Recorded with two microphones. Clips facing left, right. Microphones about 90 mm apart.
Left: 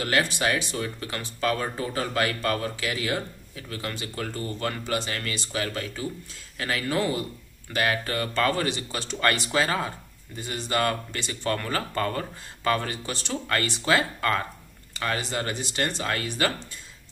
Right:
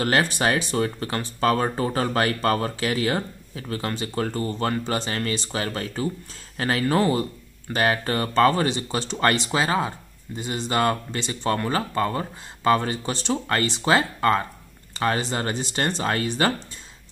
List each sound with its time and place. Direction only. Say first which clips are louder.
0.0 s speech: right 3 dB; 40° right (ahead or behind)